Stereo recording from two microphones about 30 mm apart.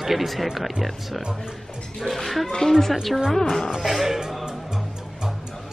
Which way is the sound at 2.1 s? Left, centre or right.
Centre.